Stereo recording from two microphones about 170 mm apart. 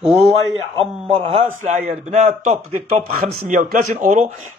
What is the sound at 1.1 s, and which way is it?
Speech, 35° right (ahead or behind).